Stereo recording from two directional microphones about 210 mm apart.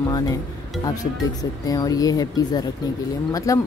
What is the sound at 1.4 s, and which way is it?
Speech, 15° left (ahead or behind).